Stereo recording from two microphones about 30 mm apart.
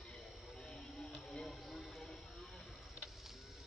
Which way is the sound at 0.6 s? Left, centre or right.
Centre.